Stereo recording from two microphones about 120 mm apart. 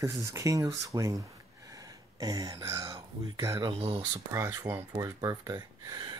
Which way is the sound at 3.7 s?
50° right (ahead or behind).